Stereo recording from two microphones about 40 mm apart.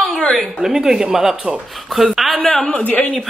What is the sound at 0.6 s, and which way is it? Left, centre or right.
Speech, centre.